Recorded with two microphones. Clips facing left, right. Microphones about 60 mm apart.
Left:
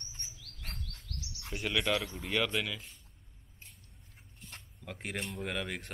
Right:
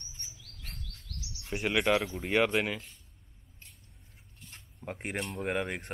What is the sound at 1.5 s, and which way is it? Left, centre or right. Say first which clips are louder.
Speech: right 5 dB; right.